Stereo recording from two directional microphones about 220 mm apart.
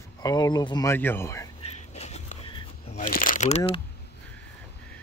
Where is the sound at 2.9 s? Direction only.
40° left (ahead or behind).